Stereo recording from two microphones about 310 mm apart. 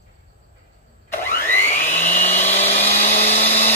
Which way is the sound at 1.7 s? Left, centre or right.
Left.